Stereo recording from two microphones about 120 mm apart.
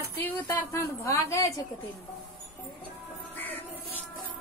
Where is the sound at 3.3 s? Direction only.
15° left (ahead or behind).